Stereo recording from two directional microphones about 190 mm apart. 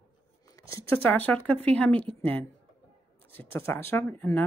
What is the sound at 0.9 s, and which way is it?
Speech, 10° left (ahead or behind).